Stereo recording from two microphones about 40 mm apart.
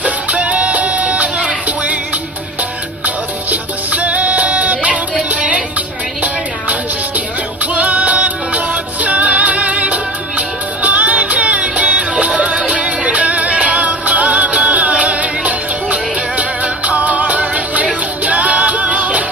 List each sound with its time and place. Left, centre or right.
0.0 s music: right
3.4 s music: right
7.7 s music: right